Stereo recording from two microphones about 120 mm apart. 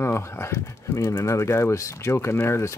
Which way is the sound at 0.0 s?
25° left (ahead or behind).